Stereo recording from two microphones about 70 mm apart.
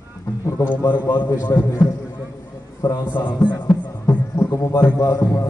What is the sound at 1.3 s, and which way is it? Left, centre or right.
Speech, left.